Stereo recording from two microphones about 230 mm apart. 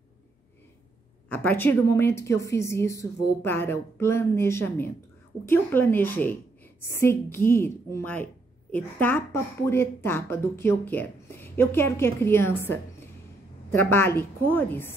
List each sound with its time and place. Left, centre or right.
1.3 s speech: centre
13.7 s speech: centre